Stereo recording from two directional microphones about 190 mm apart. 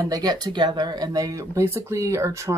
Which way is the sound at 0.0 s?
20° right (ahead or behind).